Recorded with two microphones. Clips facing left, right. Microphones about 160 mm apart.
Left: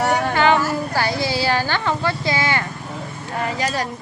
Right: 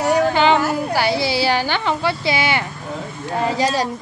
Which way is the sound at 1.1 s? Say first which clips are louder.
Right 2 dB; 75° right (ahead or behind).